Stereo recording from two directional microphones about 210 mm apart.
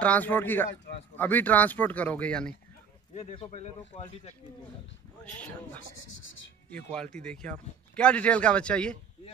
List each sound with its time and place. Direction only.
0.0 s speech: 5° left (ahead or behind)
3.2 s speech: 30° left (ahead or behind)
5.2 s speech: 5° left (ahead or behind)